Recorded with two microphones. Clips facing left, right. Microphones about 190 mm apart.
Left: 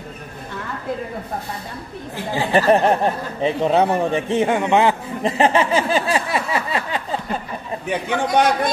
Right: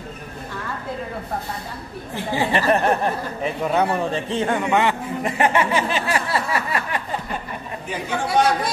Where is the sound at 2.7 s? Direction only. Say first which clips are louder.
Left 4 dB; 30° left (ahead or behind).